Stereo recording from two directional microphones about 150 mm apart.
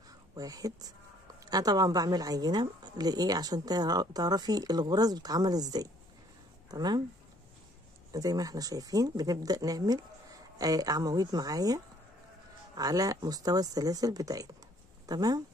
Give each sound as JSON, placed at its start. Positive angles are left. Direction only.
{"t": 0.4, "sound": "speech", "side_deg": -25}
{"t": 8.1, "sound": "speech", "side_deg": -25}